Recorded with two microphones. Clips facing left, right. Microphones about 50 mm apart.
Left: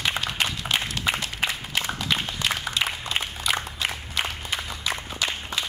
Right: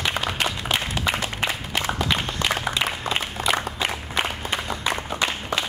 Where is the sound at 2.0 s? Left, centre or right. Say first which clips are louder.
Right 2 dB; centre.